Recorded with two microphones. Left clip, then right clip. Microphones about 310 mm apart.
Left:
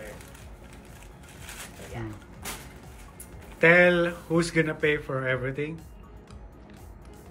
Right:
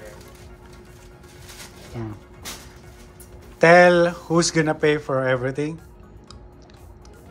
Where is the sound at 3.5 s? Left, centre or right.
Centre.